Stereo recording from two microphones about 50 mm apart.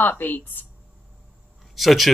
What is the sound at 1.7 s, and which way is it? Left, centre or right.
Speech, centre.